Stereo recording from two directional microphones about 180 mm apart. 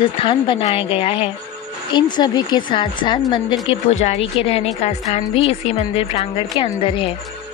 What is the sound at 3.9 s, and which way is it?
Speech, 40° left (ahead or behind).